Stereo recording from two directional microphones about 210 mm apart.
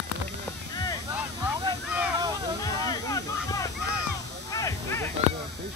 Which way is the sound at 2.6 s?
15° left (ahead or behind).